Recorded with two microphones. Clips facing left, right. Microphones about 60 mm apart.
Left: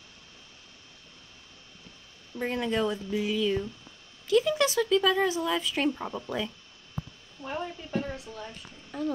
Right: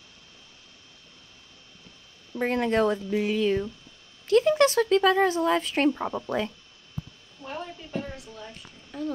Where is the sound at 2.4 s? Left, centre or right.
Right.